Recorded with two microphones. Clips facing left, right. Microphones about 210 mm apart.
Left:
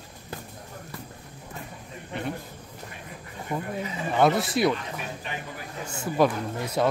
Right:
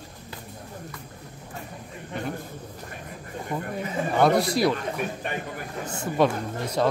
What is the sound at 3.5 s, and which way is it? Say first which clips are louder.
Speech: right 1 dB; 5° left (ahead or behind).